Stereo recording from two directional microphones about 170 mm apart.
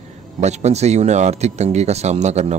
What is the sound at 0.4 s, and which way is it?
A man's voice, 40° right (ahead or behind).